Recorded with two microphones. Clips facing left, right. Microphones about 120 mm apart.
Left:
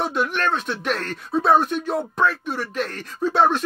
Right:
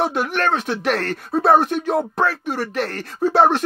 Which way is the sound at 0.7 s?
75° right (ahead or behind).